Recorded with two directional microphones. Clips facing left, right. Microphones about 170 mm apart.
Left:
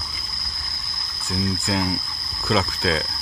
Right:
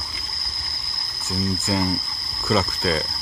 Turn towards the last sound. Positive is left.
turn(degrees=0)  # may be behind; listen again after turning